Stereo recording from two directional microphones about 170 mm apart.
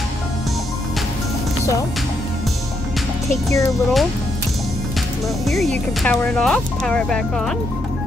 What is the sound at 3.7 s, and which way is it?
Speech, centre (ahead or behind).